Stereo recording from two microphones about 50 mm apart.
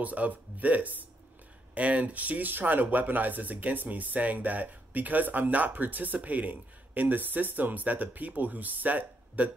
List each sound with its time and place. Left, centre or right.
0.0 s speech: right